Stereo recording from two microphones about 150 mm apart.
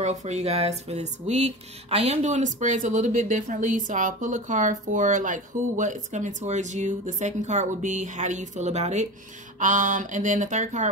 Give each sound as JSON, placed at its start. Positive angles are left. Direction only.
{"t": 0.0, "sound": "speech", "side_deg": -50}
{"t": 9.6, "sound": "speech", "side_deg": -60}